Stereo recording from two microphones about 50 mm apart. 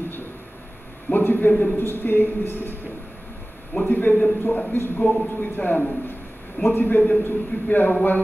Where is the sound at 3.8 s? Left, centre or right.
Left.